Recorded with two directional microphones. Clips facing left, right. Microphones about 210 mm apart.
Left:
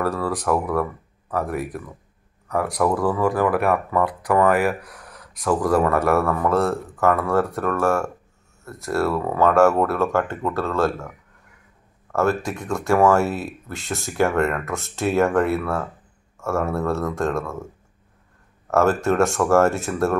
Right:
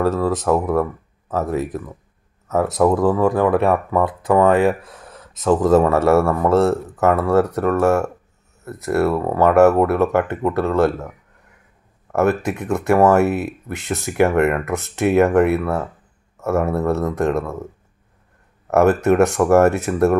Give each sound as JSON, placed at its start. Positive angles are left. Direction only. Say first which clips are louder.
{"t": 0.0, "sound": "speech", "louder": "right 5 dB", "side_deg": -20}
{"t": 12.1, "sound": "speech", "louder": "right 3 dB", "side_deg": -20}
{"t": 18.7, "sound": "speech", "louder": "right 4 dB", "side_deg": -20}